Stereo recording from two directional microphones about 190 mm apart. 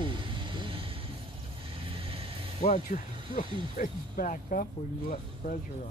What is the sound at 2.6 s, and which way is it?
Speech, 40° left (ahead or behind).